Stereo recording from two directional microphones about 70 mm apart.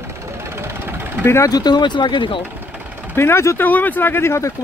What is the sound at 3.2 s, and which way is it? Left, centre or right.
Speech, left.